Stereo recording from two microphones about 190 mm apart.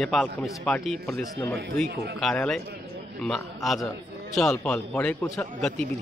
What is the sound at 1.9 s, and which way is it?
Speech, 60° right (ahead or behind).